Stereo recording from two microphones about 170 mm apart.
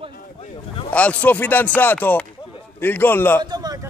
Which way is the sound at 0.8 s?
10° left (ahead or behind).